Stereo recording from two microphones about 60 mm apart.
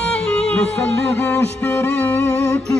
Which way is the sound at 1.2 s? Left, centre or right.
Left.